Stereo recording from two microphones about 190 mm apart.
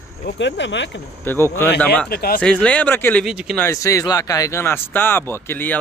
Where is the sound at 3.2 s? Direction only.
Centre (ahead or behind).